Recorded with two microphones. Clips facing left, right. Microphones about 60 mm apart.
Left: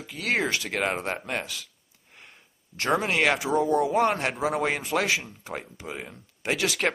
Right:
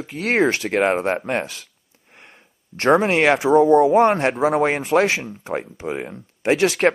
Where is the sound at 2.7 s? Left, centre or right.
Right.